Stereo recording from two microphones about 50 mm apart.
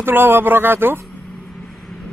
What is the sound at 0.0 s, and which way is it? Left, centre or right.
A man's voice, right.